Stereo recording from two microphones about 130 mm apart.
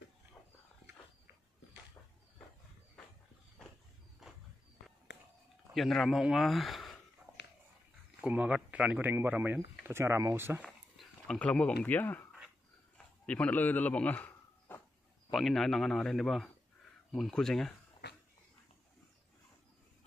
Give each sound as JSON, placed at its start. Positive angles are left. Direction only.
{"t": 4.2, "sound": "walk", "side_deg": -5}
{"t": 5.7, "sound": "a man's voice", "side_deg": 0}
{"t": 8.2, "sound": "speech", "side_deg": -10}
{"t": 10.6, "sound": "a man's voice", "side_deg": 5}
{"t": 14.7, "sound": "insect", "side_deg": 15}
{"t": 15.3, "sound": "a man's voice", "side_deg": 0}